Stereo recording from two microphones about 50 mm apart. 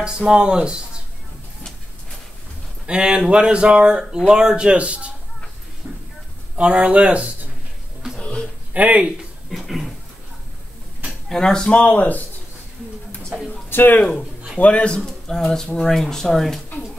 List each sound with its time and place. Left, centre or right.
0.0 s speech: centre
2.9 s speech: centre
5.8 s a sound: right
6.5 s speech: right
8.2 s a sound: centre
8.7 s speech: right
9.5 s a sound: centre
11.2 s speech: centre
11.7 s speech: left
13.7 s speech: left
14.6 s speech: left
15.0 s speech: centre